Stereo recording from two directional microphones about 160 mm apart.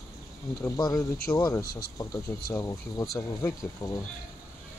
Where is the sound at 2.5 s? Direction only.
20° left (ahead or behind).